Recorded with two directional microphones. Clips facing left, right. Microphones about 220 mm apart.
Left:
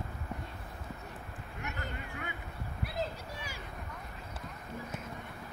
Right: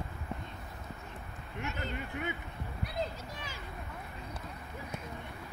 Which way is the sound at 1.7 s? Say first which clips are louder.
Right 4 dB; 20° right (ahead or behind).